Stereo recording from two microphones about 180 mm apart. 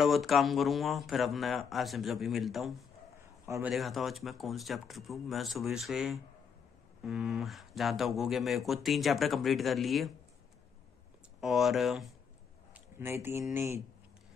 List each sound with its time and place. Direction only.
0.0 s speech: centre (ahead or behind)
3.4 s a man's voice: 15° right (ahead or behind)
3.7 s speech: centre (ahead or behind)
11.4 s speech: centre (ahead or behind)
12.7 s a man's voice: 15° right (ahead or behind)